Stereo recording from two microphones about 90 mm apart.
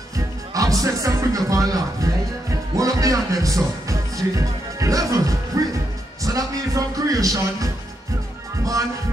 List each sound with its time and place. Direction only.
0.1 s speech: 40° right (ahead or behind)
5.5 s music: 40° right (ahead or behind)
6.2 s speech: 40° right (ahead or behind)